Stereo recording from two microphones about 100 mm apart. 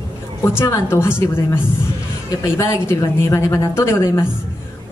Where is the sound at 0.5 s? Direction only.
25° left (ahead or behind).